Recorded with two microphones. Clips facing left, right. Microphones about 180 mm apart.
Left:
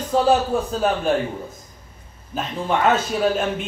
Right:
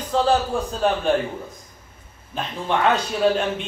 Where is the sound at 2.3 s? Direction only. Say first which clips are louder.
Left 1 dB; 5° left (ahead or behind).